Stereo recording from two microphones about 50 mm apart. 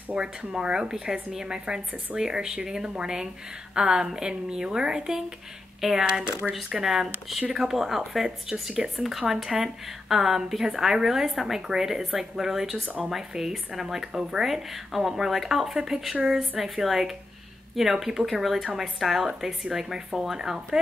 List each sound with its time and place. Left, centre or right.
0.1 s a woman's voice: right